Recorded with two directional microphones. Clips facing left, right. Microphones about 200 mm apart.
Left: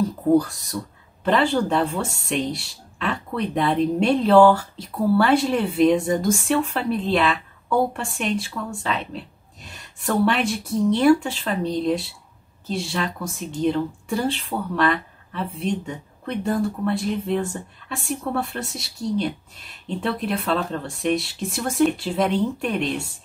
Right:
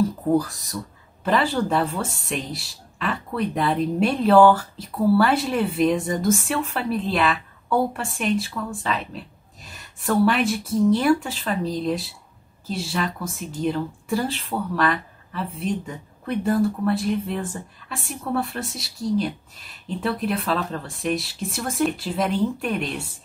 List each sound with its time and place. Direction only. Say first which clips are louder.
0.4 s speech: left 3 dB; centre (ahead or behind)